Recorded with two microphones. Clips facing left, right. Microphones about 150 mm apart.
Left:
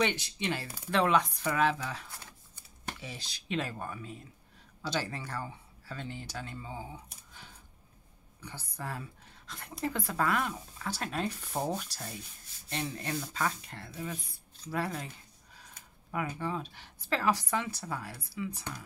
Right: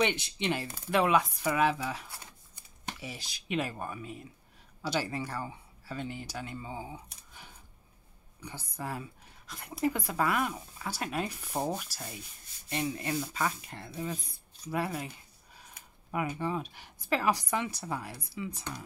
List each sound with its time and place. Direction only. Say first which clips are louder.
0.0 s speech: right 1 dB; 20° right (ahead or behind)